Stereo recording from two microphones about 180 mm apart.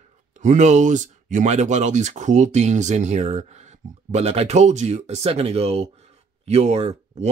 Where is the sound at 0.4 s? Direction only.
40° right (ahead or behind).